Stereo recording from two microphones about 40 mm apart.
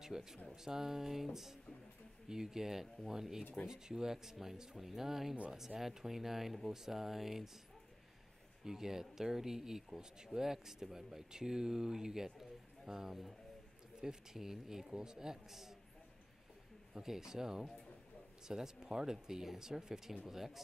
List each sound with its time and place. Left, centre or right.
0.0 s speech: centre
8.6 s speech: centre
12.4 s a sound: centre
14.0 s speech: centre
16.9 s speech: centre